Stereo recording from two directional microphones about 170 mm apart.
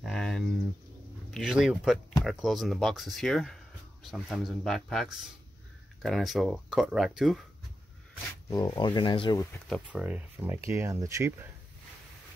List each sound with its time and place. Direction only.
0.0 s a sound: centre (ahead or behind)
1.3 s speech: 5° right (ahead or behind)
8.5 s speech: 25° left (ahead or behind)
9.8 s speech: 5° right (ahead or behind)